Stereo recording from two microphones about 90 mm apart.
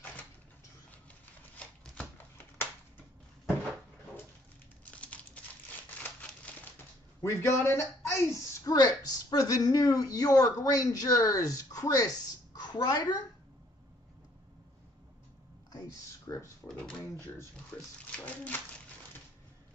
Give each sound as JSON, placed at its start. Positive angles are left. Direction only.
{"t": 4.9, "sound": "typing", "side_deg": 15}
{"t": 7.2, "sound": "a woman's voice", "side_deg": 30}
{"t": 16.3, "sound": "speech", "side_deg": 40}
{"t": 16.6, "sound": "speech", "side_deg": 10}
{"t": 17.7, "sound": "speech", "side_deg": 20}